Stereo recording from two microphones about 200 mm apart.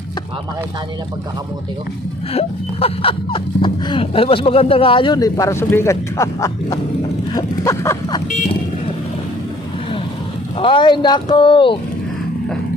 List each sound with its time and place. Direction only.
2.3 s speech: 30° left (ahead or behind)
7.3 s a sound: 15° left (ahead or behind)
10.6 s speech: 25° left (ahead or behind)